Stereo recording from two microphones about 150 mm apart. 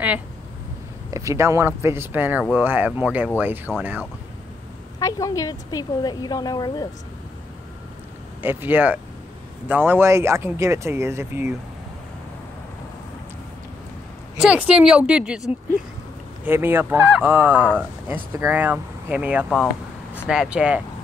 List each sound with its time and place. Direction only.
1.1 s speech: 20° right (ahead or behind)
4.9 s a woman's voice: 20° left (ahead or behind)
8.4 s speech: 15° right (ahead or behind)
14.4 s speech: 5° right (ahead or behind)